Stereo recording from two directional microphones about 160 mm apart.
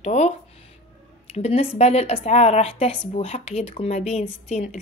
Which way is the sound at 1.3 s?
40° left (ahead or behind).